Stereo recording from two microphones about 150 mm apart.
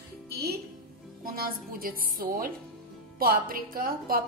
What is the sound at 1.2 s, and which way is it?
A woman's voice, 75° right (ahead or behind).